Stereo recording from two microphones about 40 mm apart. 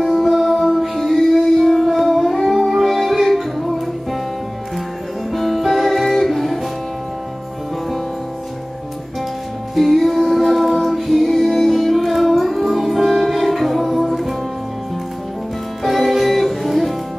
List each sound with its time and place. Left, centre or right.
0.0 s music: centre
5.3 s music: centre
9.8 s music: centre
15.8 s music: centre